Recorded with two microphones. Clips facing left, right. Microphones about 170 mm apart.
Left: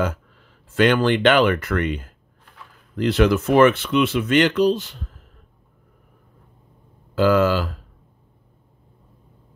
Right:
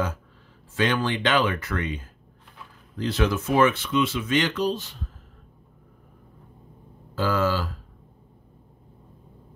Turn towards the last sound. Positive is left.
turn(degrees=70)  # may be behind; listen again after turning